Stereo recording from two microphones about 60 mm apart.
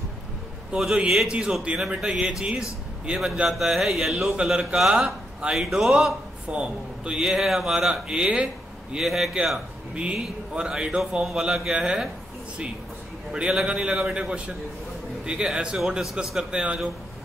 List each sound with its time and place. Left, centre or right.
0.7 s a man's voice: centre
6.5 s a man's voice: centre
8.9 s a man's voice: centre
13.3 s a man's voice: centre